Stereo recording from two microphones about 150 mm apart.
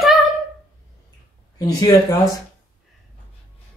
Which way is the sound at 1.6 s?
25° left (ahead or behind).